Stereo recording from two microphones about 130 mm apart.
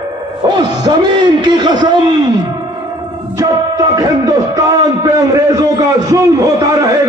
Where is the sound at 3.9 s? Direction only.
25° right (ahead or behind).